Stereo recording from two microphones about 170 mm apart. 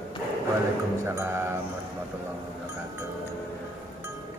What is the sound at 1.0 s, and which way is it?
Music, 15° right (ahead or behind).